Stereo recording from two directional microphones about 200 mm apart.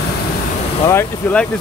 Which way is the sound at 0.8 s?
10° left (ahead or behind).